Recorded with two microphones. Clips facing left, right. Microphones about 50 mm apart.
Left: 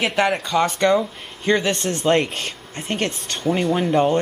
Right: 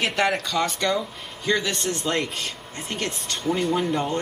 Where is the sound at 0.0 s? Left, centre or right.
Centre.